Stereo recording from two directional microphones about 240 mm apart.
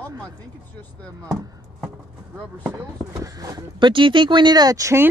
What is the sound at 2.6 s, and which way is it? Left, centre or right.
Speech, centre.